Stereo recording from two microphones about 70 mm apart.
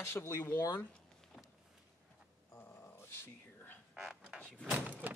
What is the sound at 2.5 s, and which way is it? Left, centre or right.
Dog, left.